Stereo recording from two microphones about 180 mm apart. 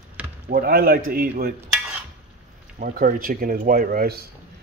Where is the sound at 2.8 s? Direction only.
50° right (ahead or behind).